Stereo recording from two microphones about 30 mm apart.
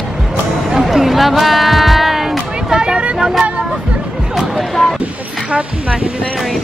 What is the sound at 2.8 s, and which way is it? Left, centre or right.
Vehicle, right.